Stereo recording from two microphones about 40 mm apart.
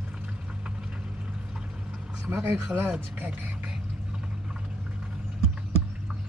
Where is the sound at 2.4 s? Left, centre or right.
Right.